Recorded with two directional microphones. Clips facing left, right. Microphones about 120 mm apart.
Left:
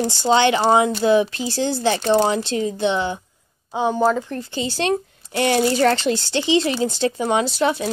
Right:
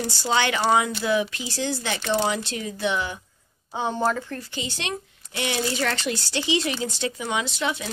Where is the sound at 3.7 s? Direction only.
15° left (ahead or behind).